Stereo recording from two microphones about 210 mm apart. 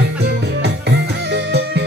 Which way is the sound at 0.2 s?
55° right (ahead or behind).